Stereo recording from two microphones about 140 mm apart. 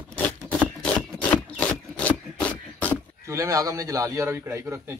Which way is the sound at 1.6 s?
10° left (ahead or behind).